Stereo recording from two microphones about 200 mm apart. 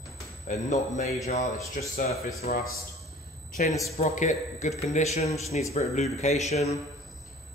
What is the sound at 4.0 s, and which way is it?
A man's voice, 35° left (ahead or behind).